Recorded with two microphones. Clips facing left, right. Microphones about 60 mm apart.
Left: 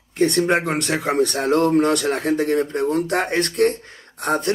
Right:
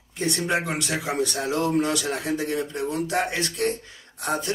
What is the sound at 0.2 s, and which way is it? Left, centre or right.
Speech, left.